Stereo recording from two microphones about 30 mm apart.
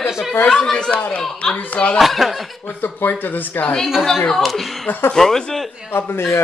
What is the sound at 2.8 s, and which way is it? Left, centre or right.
Speech, left.